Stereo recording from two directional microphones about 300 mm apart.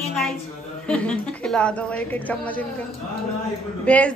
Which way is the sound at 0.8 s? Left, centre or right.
Centre.